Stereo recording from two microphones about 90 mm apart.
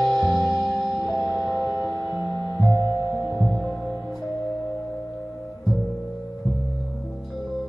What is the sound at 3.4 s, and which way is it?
Music, 20° left (ahead or behind).